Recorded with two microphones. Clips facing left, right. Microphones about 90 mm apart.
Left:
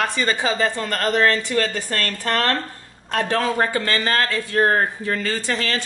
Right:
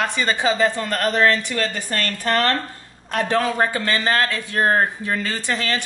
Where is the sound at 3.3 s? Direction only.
20° right (ahead or behind).